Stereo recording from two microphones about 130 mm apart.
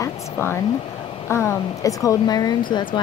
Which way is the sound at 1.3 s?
20° left (ahead or behind).